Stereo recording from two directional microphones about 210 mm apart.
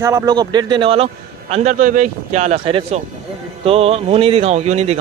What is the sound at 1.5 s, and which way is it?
A man's voice, 35° right (ahead or behind).